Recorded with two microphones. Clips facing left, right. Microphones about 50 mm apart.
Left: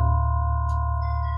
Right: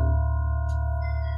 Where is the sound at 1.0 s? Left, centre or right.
Centre.